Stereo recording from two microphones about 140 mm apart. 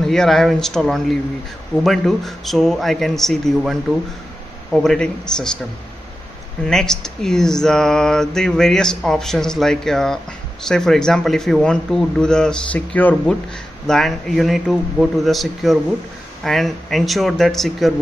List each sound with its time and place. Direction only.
0.0 s speech: centre (ahead or behind)
4.7 s speech: 5° left (ahead or behind)
6.6 s speech: 5° left (ahead or behind)